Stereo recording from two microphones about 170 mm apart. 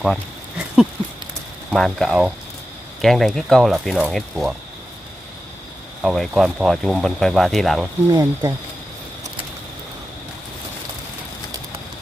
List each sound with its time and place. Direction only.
0.0 s a sound: centre (ahead or behind)
1.7 s speech: centre (ahead or behind)
6.0 s speech: centre (ahead or behind)
8.1 s speech: 20° right (ahead or behind)